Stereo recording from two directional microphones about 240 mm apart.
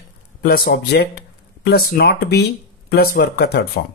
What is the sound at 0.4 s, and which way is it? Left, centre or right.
Speech, left.